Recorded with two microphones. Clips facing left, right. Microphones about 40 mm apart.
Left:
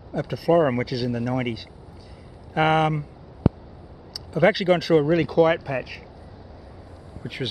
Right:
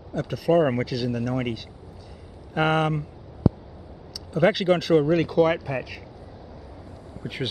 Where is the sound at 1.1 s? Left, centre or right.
Centre.